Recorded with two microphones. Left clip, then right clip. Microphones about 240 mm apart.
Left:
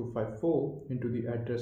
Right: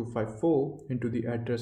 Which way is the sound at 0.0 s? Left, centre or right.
Right.